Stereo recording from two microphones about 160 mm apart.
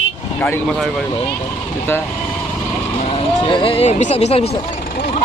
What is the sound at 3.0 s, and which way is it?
Speech, 35° left (ahead or behind).